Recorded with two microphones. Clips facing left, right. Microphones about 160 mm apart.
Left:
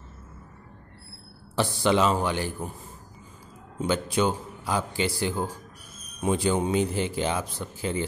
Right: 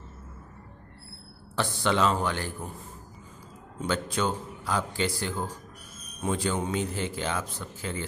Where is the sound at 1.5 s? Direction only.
10° left (ahead or behind).